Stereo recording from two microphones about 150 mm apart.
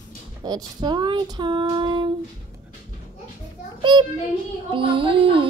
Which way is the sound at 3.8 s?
30° right (ahead or behind).